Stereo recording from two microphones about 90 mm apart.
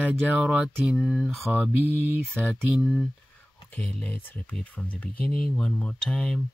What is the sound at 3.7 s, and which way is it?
Speech, 15° left (ahead or behind).